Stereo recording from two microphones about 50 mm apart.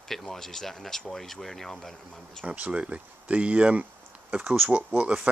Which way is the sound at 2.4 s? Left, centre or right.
Right.